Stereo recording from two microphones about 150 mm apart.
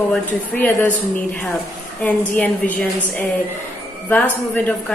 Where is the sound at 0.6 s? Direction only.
15° left (ahead or behind).